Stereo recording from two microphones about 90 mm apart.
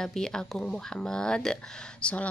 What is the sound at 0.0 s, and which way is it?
A woman's voice, 5° left (ahead or behind).